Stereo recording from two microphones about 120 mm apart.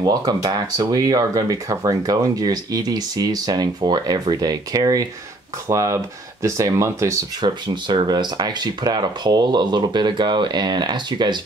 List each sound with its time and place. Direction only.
0.0 s speech: 30° right (ahead or behind)
7.4 s speech: 40° right (ahead or behind)